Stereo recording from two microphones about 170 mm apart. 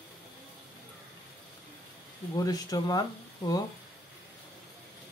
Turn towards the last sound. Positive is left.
turn(degrees=20)  # may be behind; listen again after turning